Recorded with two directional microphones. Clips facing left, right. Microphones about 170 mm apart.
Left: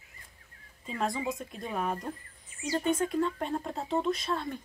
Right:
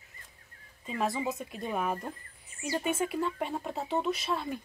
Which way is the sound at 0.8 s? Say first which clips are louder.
Right 1 dB; 5° right (ahead or behind).